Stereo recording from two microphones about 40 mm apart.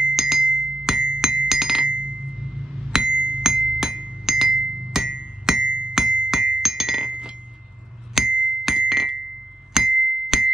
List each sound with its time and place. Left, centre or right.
0.1 s glass: centre
1.9 s chink: right
2.9 s glass: right
8.1 s music: centre
9.8 s glass: centre